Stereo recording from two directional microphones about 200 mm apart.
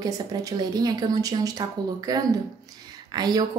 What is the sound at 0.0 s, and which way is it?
A woman's voice, 20° right (ahead or behind).